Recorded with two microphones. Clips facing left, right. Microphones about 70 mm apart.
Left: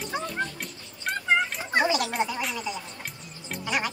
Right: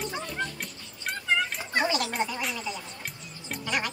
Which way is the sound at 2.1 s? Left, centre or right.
Centre.